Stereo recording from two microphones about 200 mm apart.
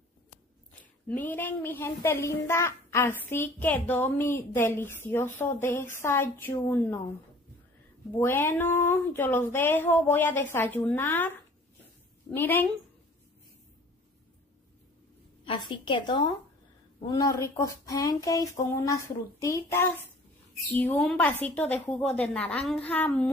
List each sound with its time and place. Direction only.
1.0 s a child's voice: 10° left (ahead or behind)
8.2 s a child's voice: 10° left (ahead or behind)
12.4 s a child's voice: 10° left (ahead or behind)
15.4 s a woman's voice: 25° left (ahead or behind); by 23.3 s 10° left (ahead or behind)